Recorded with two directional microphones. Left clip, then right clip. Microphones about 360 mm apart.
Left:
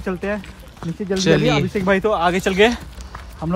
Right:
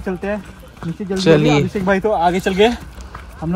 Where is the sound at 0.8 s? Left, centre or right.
Centre.